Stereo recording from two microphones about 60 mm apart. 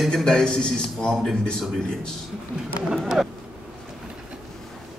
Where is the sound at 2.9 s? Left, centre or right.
Centre.